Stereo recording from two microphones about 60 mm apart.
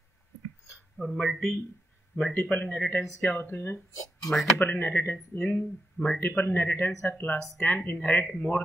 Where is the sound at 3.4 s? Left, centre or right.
Left.